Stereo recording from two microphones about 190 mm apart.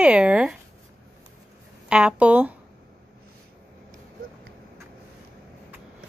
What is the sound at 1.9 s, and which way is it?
Speech, 5° right (ahead or behind).